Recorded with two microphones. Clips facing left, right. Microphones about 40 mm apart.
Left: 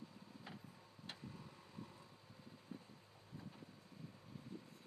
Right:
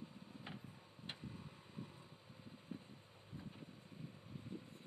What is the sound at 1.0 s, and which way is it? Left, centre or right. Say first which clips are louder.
Vehicle: right 2 dB; right.